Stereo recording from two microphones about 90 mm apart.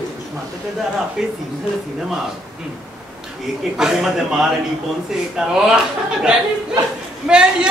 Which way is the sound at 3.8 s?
5° right (ahead or behind).